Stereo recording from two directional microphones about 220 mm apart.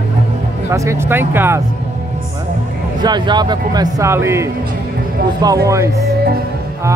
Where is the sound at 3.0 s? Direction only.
20° right (ahead or behind).